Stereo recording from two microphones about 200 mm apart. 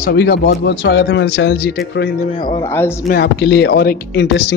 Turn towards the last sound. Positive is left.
turn(degrees=55)  # may be behind; listen again after turning